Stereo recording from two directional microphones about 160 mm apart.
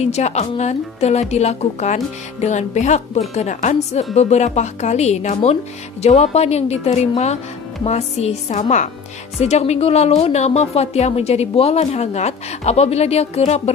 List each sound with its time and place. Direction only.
0.0 s a woman's voice: 45° left (ahead or behind)